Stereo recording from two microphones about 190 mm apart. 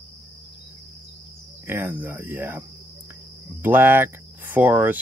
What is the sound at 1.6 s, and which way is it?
Speech, 10° right (ahead or behind).